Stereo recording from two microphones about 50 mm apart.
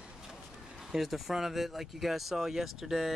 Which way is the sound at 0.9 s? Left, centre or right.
Centre.